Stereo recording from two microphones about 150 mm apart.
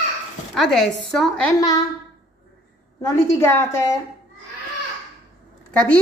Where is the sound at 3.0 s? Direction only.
20° left (ahead or behind).